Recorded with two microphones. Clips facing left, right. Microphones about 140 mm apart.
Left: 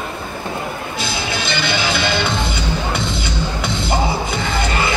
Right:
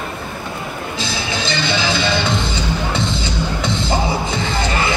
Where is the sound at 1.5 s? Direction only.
25° right (ahead or behind).